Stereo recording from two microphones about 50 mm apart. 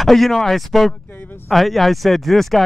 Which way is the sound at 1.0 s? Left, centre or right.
Left.